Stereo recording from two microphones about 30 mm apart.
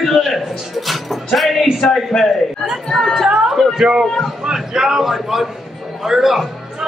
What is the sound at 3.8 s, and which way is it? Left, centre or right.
A man's voice, centre.